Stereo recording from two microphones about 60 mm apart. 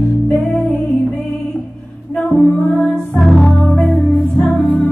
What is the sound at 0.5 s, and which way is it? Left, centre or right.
Music, left.